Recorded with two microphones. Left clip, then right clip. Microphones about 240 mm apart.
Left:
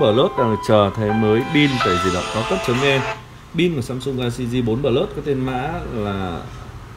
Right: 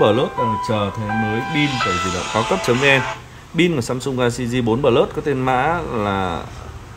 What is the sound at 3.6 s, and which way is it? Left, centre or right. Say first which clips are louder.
Speech: right 3 dB; centre.